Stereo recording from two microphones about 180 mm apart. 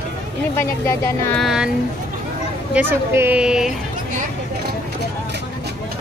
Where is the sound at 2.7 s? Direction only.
10° right (ahead or behind).